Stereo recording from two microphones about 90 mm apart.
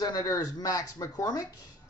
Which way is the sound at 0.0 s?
45° left (ahead or behind).